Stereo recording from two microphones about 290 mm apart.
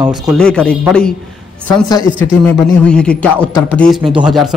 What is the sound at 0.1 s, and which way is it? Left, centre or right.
Speech, centre.